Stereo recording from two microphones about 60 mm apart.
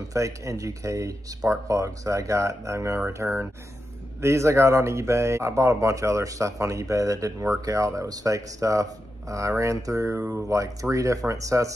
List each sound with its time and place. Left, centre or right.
0.1 s speech: right
3.2 s speech: right
4.2 s speech: right